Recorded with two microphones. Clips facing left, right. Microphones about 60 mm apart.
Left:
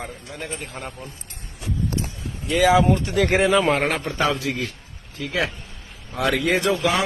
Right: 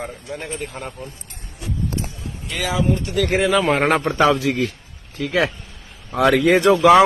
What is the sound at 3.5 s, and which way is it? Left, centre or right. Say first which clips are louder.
Speech: right 1 dB; centre.